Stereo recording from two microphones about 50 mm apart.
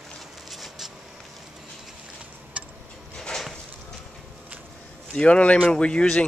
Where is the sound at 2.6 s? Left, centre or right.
Right.